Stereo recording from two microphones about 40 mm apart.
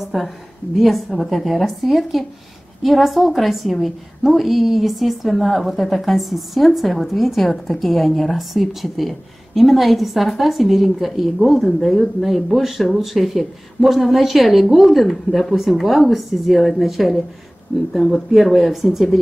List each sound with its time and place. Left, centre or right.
0.0 s a woman's voice: centre
15.0 s speech: centre
15.5 s a woman's voice: centre